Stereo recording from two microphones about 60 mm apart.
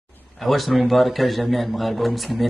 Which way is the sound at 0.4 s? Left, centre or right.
Centre.